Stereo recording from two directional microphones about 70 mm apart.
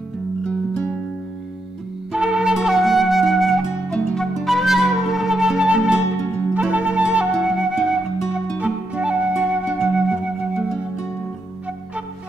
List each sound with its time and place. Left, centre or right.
2.1 s flute: centre
8.5 s music: centre